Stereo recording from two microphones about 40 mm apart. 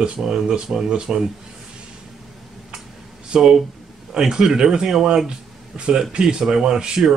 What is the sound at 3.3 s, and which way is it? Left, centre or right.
Speech, right.